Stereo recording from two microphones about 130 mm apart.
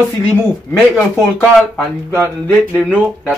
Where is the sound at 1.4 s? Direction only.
5° left (ahead or behind).